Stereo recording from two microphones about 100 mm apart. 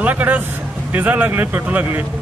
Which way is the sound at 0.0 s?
15° right (ahead or behind).